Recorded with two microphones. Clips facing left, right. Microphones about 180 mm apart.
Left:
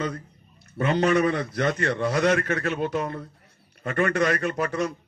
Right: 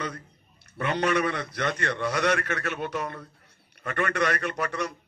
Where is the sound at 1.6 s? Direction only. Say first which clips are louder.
Left 3 dB; 40° left (ahead or behind).